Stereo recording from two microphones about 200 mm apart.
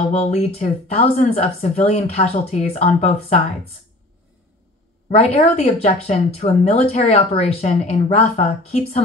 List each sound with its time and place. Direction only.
0.0 s a woman's voice: 35° left (ahead or behind)
5.1 s a woman's voice: 30° left (ahead or behind)